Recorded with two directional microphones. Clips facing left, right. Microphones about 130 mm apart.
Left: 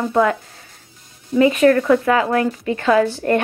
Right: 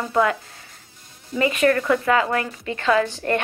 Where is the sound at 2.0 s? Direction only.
20° left (ahead or behind).